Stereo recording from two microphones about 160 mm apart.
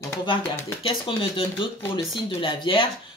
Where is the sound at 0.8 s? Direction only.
35° left (ahead or behind).